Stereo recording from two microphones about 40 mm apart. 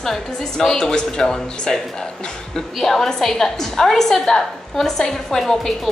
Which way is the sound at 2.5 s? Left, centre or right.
Centre.